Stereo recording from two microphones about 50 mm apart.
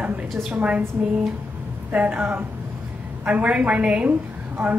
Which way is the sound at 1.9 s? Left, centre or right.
Right.